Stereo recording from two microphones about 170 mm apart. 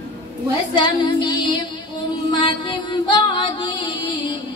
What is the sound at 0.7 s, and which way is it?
Female singing, 30° left (ahead or behind).